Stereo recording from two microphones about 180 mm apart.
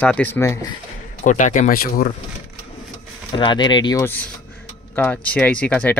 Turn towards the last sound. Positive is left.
turn(degrees=10)  # may be behind; listen again after turning